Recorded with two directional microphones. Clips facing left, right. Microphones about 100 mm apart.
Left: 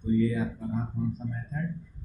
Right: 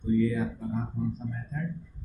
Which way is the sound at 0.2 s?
5° left (ahead or behind).